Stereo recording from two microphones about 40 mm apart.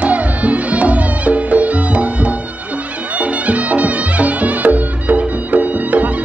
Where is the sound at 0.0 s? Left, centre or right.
Right.